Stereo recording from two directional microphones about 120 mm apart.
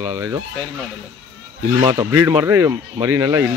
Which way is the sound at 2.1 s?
20° right (ahead or behind).